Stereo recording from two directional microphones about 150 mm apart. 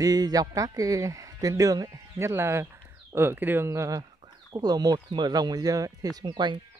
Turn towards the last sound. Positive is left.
turn(degrees=-30)  # may be behind; listen again after turning